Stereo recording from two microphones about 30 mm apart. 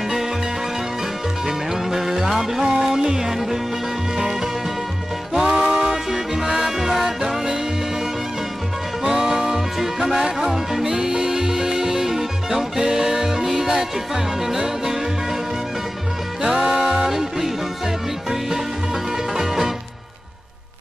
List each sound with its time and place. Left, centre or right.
1.9 s music: centre
5.3 s music: centre
5.9 s music: centre
9.0 s music: centre
16.4 s music: centre
19.3 s music: centre